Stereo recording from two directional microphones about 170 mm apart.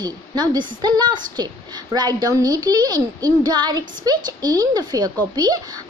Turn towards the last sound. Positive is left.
turn(degrees=-20)  # may be behind; listen again after turning